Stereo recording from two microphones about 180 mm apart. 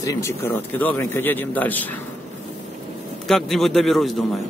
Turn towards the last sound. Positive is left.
turn(degrees=0)  # may be behind; listen again after turning